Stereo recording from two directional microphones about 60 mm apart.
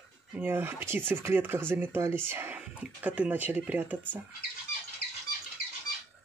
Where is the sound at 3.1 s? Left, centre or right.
Right.